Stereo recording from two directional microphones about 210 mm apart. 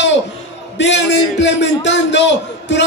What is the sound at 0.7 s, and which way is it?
A man's voice, 60° left (ahead or behind).